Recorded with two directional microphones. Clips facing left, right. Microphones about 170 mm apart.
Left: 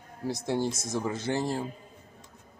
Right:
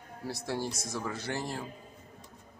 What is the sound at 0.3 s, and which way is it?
A man's voice, 20° left (ahead or behind).